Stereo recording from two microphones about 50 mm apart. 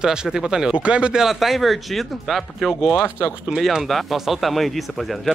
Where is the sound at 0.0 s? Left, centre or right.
Centre.